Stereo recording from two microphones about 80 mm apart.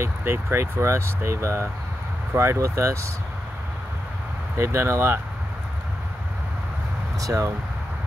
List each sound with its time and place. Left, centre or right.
0.0 s speech: right
4.6 s speech: right
7.2 s speech: right